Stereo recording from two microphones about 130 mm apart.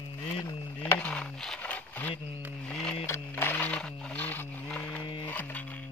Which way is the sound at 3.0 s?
15° left (ahead or behind).